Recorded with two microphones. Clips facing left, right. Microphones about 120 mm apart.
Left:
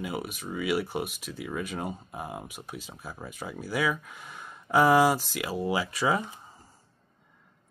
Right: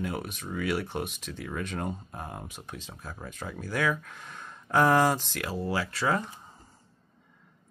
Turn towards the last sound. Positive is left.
turn(degrees=10)  # may be behind; listen again after turning